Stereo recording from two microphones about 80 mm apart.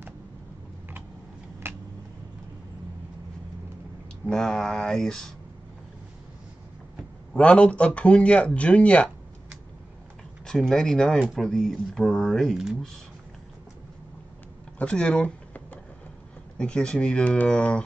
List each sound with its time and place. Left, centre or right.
1.6 s a sound: right
4.3 s speech: centre
7.3 s speech: centre
10.4 s speech: centre
14.8 s a sound: centre
16.5 s speech: centre